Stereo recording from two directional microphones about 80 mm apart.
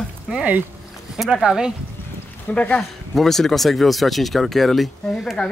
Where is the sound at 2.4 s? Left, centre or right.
Centre.